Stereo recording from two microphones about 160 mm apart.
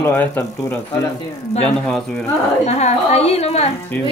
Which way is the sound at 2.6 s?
45° left (ahead or behind).